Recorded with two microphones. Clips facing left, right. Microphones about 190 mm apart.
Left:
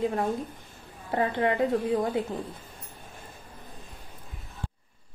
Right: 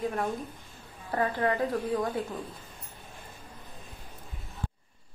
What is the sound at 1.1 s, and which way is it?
Speech, 25° left (ahead or behind).